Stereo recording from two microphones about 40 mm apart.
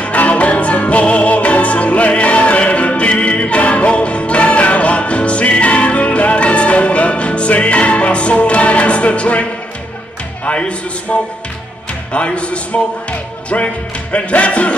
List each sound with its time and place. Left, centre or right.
0.0 s music: left
12.1 s speech: left
13.5 s music: left